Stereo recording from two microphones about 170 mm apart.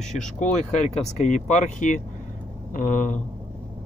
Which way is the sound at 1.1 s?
45° left (ahead or behind).